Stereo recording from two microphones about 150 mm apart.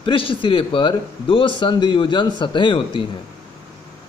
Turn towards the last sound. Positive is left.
turn(degrees=35)  # may be behind; listen again after turning